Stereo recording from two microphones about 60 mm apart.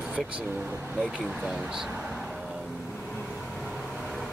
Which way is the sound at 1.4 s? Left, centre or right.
Centre.